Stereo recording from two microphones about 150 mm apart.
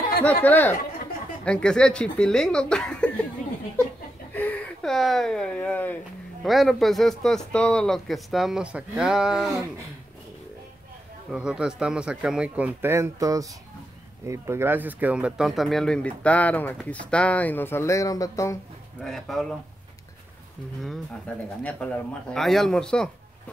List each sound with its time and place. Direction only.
0.2 s a man's voice: 10° left (ahead or behind)
4.3 s speech: 10° left (ahead or behind)
6.4 s a man's voice: centre (ahead or behind)
11.3 s speech: 5° right (ahead or behind); by 18.6 s 20° left (ahead or behind)
19.0 s a man's voice: centre (ahead or behind)
20.8 s a man's voice: 5° left (ahead or behind)